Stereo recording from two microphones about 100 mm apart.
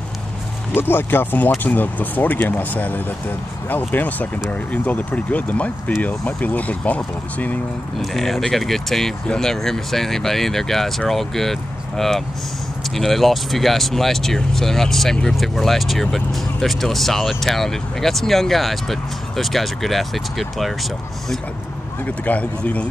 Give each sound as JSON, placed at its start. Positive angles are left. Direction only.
{"t": 0.7, "sound": "speech", "side_deg": 20}
{"t": 8.0, "sound": "speech", "side_deg": 0}
{"t": 12.9, "sound": "speech", "side_deg": 0}
{"t": 22.0, "sound": "speech", "side_deg": 15}